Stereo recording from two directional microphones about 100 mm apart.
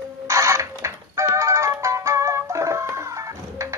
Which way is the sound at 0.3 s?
30° right (ahead or behind).